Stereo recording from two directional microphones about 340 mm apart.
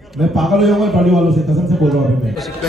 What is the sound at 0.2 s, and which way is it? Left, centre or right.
A man's voice, centre.